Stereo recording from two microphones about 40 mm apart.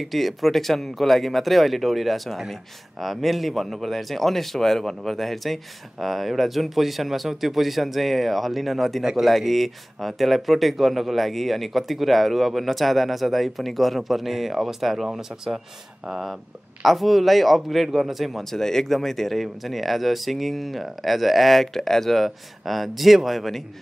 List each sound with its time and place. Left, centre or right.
0.0 s speech: centre
18.4 s speech: centre